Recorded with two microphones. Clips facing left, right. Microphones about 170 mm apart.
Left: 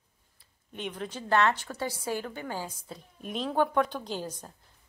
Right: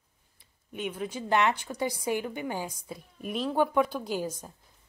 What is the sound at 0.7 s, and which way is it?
A woman's voice, 10° right (ahead or behind).